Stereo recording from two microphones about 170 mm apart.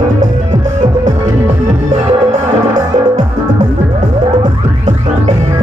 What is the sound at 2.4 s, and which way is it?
Music, 45° right (ahead or behind).